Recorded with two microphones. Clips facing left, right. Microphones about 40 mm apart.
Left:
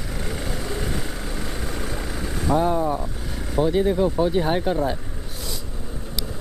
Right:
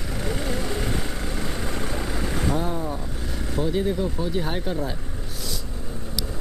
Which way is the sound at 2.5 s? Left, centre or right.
Centre.